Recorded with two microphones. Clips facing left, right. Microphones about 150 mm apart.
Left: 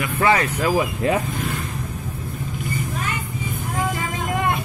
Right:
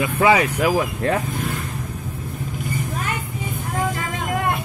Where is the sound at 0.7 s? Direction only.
5° left (ahead or behind).